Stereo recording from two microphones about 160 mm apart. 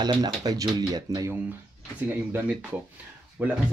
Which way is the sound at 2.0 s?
10° right (ahead or behind).